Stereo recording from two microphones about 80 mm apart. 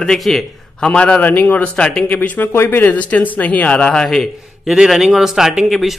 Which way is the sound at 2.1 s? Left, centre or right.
Left.